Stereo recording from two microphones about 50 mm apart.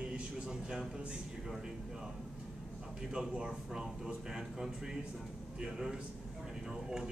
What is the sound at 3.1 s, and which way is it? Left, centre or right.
Speech, centre.